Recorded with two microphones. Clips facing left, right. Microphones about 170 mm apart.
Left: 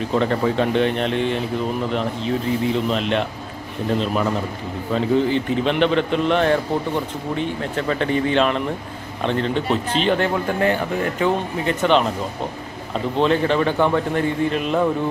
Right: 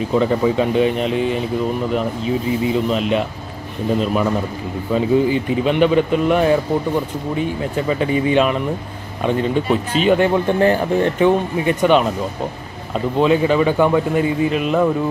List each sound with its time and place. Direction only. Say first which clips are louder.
0.1 s a man's voice: right 3 dB; 5° right (ahead or behind)
10.6 s speech: right 4 dB; 35° right (ahead or behind)
11.1 s a man's voice: right 5 dB; 15° right (ahead or behind)
13.2 s a man's voice: right 3 dB; 10° right (ahead or behind)